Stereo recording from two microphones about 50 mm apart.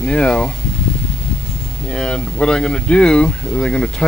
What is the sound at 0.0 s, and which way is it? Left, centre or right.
Speech, centre.